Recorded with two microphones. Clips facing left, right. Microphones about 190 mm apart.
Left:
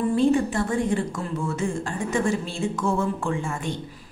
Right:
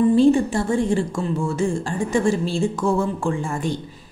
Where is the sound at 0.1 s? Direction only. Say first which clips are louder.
Right 5 dB; 30° right (ahead or behind).